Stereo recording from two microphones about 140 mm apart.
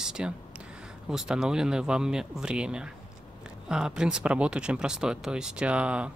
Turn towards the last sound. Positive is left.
turn(degrees=-10)  # may be behind; listen again after turning